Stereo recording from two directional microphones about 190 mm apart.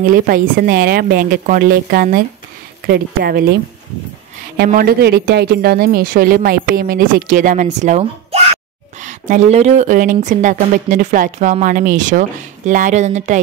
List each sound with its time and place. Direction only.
0.0 s speech: 50° right (ahead or behind)
4.6 s a woman's voice: 50° right (ahead or behind)